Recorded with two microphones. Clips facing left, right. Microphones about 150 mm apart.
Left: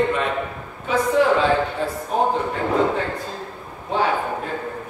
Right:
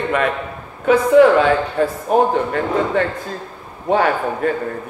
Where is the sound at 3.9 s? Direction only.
75° right (ahead or behind).